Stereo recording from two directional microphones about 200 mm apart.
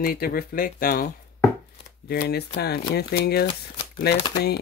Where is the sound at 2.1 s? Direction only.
50° left (ahead or behind).